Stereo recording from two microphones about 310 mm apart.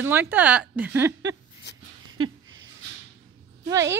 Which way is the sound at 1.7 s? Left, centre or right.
Left.